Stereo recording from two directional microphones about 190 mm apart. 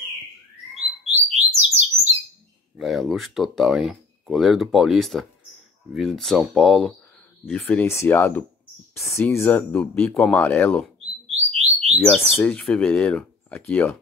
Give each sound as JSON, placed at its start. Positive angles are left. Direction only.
{"t": 1.0, "sound": "bird", "side_deg": -35}
{"t": 2.7, "sound": "speech", "side_deg": 0}
{"t": 12.0, "sound": "speech", "side_deg": 5}